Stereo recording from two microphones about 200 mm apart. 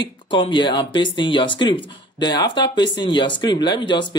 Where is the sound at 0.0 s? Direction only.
20° left (ahead or behind).